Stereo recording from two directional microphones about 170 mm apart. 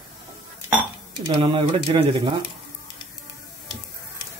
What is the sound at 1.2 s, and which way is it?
Speech, 30° right (ahead or behind).